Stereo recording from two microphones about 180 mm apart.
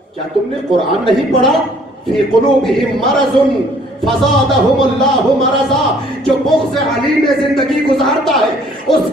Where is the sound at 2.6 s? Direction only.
Centre (ahead or behind).